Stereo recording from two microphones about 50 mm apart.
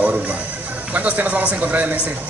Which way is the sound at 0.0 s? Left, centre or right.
Right.